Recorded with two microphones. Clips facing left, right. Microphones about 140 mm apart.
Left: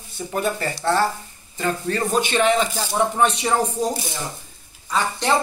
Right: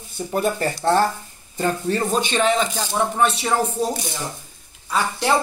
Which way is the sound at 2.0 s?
5° left (ahead or behind).